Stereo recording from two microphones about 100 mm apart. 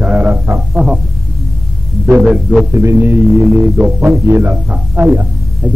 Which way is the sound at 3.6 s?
15° right (ahead or behind).